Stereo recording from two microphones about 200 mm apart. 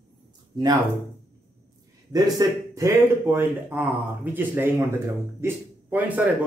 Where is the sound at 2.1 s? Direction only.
15° right (ahead or behind).